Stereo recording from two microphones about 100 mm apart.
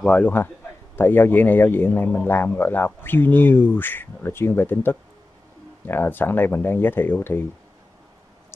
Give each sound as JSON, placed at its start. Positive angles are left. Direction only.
{"t": 0.0, "sound": "a man's voice", "side_deg": 15}